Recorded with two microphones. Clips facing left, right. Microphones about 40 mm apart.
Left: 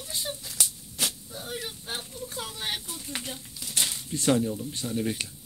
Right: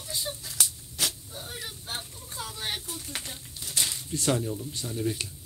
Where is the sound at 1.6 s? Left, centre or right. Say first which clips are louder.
Left 1 dB; left.